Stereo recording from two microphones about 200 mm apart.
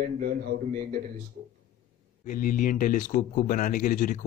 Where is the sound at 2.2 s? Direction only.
45° left (ahead or behind).